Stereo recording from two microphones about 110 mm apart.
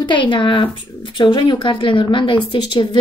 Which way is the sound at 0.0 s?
45° left (ahead or behind).